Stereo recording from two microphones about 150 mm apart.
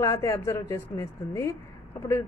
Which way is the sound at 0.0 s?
20° left (ahead or behind).